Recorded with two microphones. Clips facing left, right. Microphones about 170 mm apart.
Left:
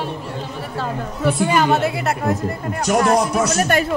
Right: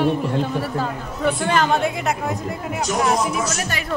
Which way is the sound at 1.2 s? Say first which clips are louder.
Left 2 dB; 5° left (ahead or behind).